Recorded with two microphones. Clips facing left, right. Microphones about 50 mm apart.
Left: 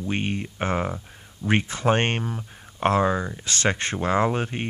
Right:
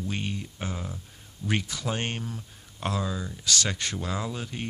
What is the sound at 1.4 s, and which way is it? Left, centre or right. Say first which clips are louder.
Speech: left 7 dB; left.